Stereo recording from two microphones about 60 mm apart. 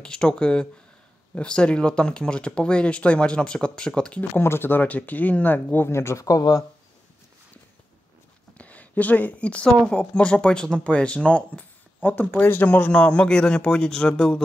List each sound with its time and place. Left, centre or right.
0.0 s speech: centre
4.2 s speech: left
4.8 s speech: left
5.9 s speech: left
6.2 s speech: left
8.5 s speech: left